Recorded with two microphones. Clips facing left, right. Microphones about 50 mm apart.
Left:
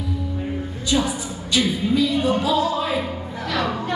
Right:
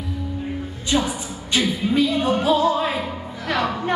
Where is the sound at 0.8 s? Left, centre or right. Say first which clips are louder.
Even; right.